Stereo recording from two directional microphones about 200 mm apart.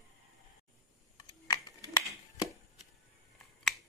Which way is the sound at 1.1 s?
20° left (ahead or behind).